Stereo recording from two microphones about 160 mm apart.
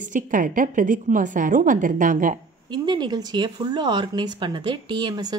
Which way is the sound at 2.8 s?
25° right (ahead or behind).